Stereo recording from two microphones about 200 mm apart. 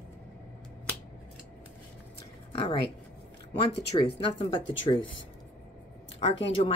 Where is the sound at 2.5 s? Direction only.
25° left (ahead or behind).